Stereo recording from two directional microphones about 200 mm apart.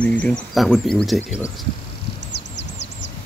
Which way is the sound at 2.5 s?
60° left (ahead or behind).